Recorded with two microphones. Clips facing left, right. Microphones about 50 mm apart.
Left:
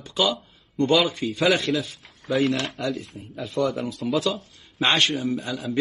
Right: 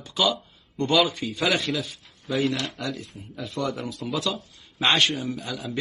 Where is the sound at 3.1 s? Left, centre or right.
Left.